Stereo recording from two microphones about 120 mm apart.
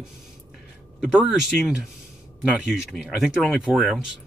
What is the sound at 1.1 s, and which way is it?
Speech, 5° right (ahead or behind).